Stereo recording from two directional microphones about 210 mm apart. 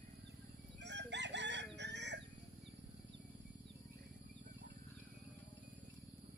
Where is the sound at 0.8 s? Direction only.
55° right (ahead or behind).